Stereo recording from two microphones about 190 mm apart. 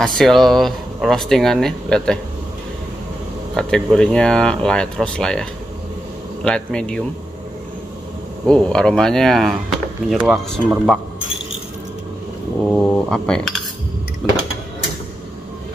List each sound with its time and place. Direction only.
0.0 s speech: centre (ahead or behind)
3.5 s speech: 5° left (ahead or behind)
8.5 s speech: 5° left (ahead or behind)
12.7 s speech: 5° left (ahead or behind)